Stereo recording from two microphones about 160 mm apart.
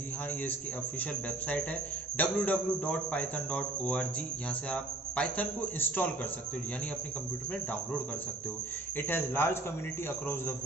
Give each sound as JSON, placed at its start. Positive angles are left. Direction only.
{"t": 2.1, "sound": "a man's voice", "side_deg": 10}
{"t": 8.9, "sound": "a man's voice", "side_deg": 15}